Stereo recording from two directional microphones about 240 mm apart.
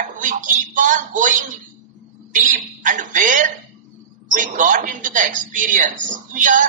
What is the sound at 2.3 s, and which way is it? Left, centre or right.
A woman's voice, right.